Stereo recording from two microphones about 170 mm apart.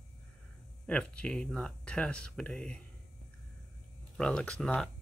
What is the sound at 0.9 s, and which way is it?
Speech, 5° left (ahead or behind).